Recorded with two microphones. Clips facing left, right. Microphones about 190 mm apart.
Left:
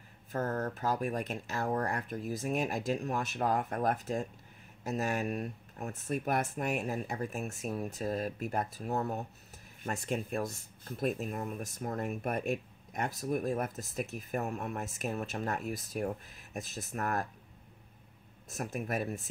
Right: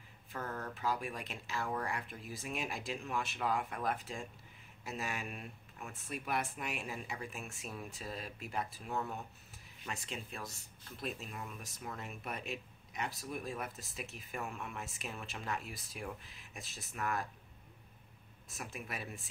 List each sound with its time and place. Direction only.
0.3 s speech: 45° left (ahead or behind)
9.8 s speech: 50° left (ahead or behind)
18.5 s speech: 45° left (ahead or behind)